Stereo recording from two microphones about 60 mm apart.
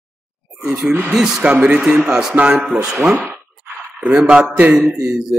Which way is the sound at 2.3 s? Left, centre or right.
Right.